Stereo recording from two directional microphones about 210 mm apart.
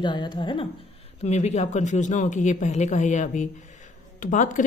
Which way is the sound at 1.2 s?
35° left (ahead or behind).